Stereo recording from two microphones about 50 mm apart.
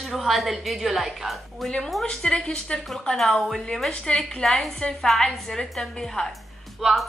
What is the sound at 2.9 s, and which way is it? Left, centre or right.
A woman's voice, centre.